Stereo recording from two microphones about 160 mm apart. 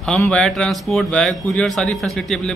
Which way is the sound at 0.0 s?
5° left (ahead or behind).